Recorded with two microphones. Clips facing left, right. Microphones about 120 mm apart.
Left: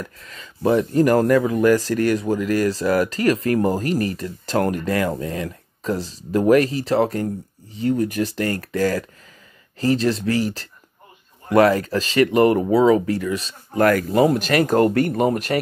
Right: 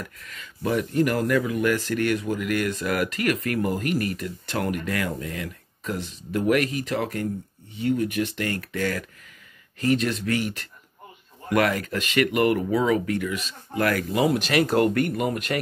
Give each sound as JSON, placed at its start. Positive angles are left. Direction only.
{"t": 0.0, "sound": "speech", "side_deg": 35}